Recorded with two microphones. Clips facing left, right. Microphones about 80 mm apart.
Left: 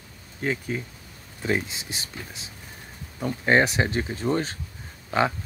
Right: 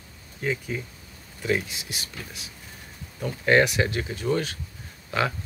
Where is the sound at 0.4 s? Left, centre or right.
Left.